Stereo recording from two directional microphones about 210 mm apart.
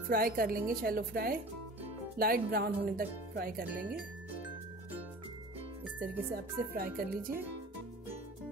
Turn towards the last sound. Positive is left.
turn(degrees=-45)  # may be behind; listen again after turning